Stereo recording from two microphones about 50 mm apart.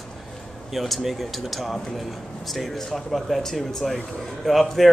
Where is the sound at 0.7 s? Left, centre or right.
Centre.